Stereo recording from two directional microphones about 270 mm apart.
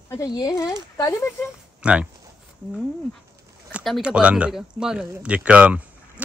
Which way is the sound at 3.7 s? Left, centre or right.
Centre.